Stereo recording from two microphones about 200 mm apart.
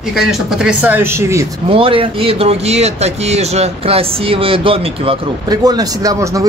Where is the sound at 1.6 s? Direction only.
25° right (ahead or behind).